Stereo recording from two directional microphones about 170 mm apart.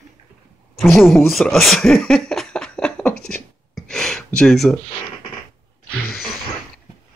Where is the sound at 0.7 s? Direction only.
Centre (ahead or behind).